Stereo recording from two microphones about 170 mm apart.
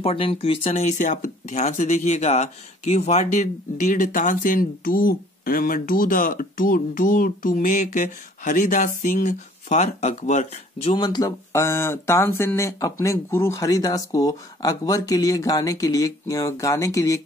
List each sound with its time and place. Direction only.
0.0 s speech: 35° left (ahead or behind)
11.0 s speech: 25° left (ahead or behind)